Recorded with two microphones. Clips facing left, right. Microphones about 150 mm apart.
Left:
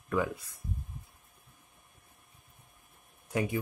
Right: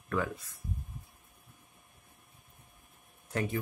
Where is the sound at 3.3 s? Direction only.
10° left (ahead or behind).